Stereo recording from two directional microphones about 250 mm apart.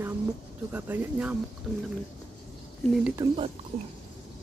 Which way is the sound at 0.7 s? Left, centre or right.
Centre.